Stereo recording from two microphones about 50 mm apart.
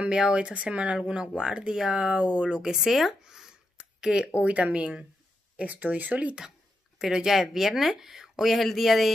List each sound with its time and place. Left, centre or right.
0.0 s speech: right
2.7 s a sound: centre
4.4 s speech: right
5.6 s speech: right
7.0 s speech: centre